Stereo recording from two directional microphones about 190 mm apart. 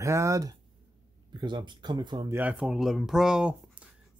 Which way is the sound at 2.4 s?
5° right (ahead or behind).